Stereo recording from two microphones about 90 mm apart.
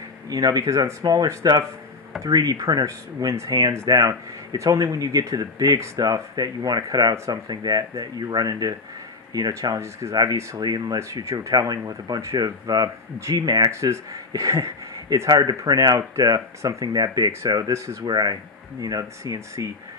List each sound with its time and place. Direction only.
0.3 s speech: 40° right (ahead or behind)
10.6 s speech: 50° right (ahead or behind)
15.2 s speech: 45° right (ahead or behind)
18.0 s speech: 50° right (ahead or behind)